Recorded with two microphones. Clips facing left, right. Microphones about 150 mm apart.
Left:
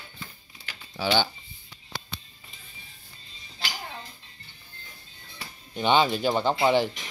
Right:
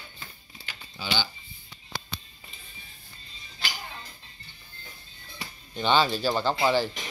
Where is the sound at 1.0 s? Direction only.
70° left (ahead or behind).